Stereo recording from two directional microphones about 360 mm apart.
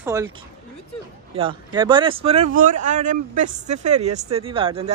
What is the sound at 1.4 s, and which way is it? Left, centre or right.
Speech, centre.